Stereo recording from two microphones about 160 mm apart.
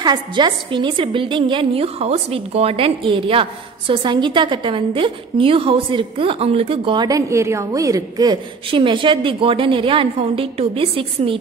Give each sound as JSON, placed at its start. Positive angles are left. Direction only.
{"t": 0.0, "sound": "a woman's voice", "side_deg": -25}